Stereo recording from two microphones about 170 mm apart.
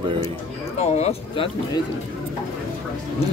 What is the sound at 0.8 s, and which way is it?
Speech, 40° left (ahead or behind).